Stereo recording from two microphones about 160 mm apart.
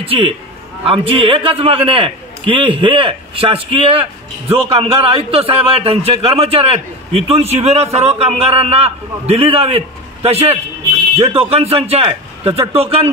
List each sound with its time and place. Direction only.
0.0 s a man's voice: 35° right (ahead or behind)